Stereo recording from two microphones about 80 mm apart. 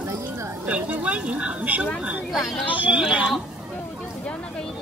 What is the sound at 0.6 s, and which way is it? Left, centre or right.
Speech, centre.